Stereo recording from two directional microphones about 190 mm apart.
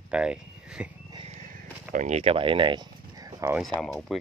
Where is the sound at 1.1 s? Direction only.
35° right (ahead or behind); by 3.5 s 20° right (ahead or behind).